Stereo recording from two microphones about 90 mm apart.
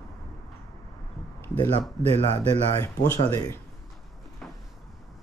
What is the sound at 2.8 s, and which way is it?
Speech, 25° left (ahead or behind).